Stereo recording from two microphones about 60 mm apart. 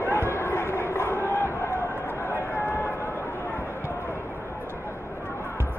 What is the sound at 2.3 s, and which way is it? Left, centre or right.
Run, left.